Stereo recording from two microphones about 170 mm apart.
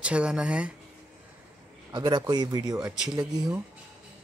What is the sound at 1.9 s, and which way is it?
Speech, 25° right (ahead or behind).